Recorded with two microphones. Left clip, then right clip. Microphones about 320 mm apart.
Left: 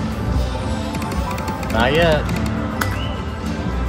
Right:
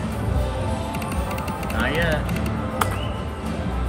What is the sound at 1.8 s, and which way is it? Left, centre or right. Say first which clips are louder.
Speech: left 8 dB; centre.